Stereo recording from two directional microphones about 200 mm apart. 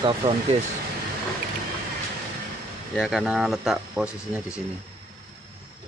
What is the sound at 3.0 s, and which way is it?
Speech, centre (ahead or behind).